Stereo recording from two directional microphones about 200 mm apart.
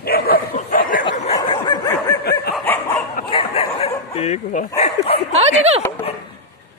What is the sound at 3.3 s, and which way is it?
Bow-wow, 30° left (ahead or behind).